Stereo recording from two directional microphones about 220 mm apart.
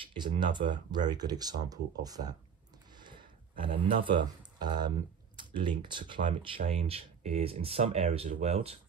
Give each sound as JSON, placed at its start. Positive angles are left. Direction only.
{"t": 0.1, "sound": "speech", "side_deg": -20}
{"t": 3.0, "sound": "a sound", "side_deg": -20}
{"t": 3.6, "sound": "speech", "side_deg": -20}